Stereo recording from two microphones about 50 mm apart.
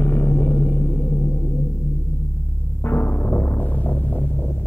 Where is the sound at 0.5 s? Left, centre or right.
Left.